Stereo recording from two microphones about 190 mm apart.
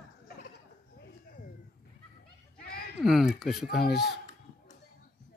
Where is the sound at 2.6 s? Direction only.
55° left (ahead or behind).